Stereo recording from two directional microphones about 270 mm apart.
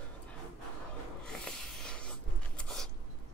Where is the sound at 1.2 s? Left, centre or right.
Centre.